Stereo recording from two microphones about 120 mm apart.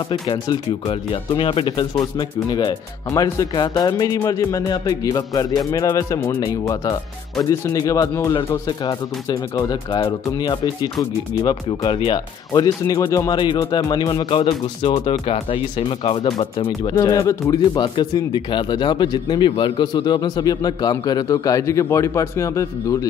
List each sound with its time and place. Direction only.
0.3 s speech: 45° left (ahead or behind)
2.0 s speech: 35° left (ahead or behind)
3.1 s speech: 25° left (ahead or behind)
3.5 s speech: 40° left (ahead or behind)
16.9 s speech: 30° left (ahead or behind)